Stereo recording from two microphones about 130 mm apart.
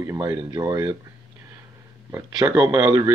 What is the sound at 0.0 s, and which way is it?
Speech, 20° right (ahead or behind).